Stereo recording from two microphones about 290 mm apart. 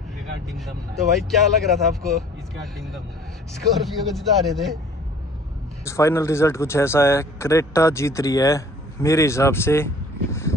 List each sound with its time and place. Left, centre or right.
0.5 s speech: centre
5.9 s speech: centre